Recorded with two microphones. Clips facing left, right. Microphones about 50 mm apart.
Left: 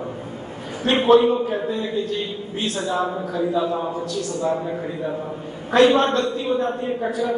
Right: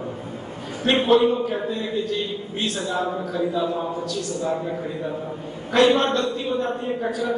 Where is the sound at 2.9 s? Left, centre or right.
Left.